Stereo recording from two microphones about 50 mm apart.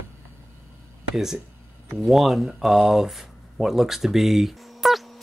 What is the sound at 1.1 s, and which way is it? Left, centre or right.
Speech, centre.